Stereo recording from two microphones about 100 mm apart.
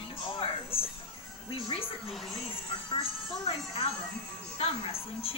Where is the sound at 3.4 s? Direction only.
65° left (ahead or behind).